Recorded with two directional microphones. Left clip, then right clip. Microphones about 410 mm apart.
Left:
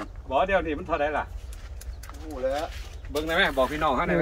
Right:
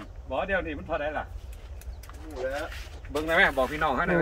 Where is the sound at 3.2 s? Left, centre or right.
Centre.